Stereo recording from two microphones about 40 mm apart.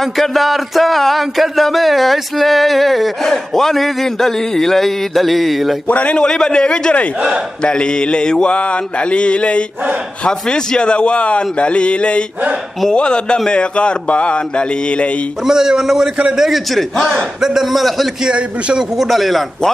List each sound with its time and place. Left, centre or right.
0.0 s speech: centre
5.9 s a man's voice: left
6.1 s mantra: left
15.4 s a man's voice: centre
18.3 s a man's voice: right
18.9 s speech: centre